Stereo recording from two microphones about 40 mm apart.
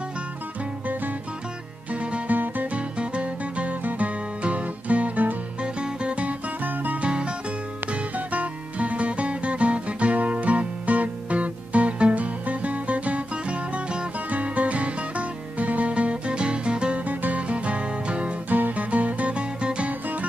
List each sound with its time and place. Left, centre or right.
1.9 s music: right
2.2 s music: right
2.7 s music: right
5.6 s music: right
6.6 s music: right
7.0 s music: right
7.9 s music: right
14.3 s music: right
17.0 s music: right
17.4 s music: right
18.5 s music: right
19.9 s music: right